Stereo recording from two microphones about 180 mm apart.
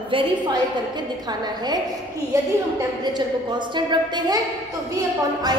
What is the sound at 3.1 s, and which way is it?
A woman's voice, 25° right (ahead or behind).